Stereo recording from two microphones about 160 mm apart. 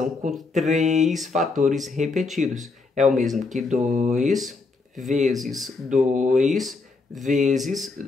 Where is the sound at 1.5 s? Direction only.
50° right (ahead or behind).